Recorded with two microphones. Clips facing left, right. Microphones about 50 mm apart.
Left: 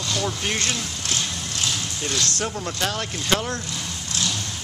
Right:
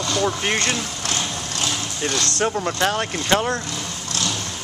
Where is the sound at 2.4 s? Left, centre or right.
Right.